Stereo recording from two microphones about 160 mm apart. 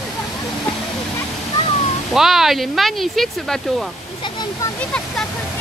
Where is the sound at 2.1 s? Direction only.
Centre (ahead or behind).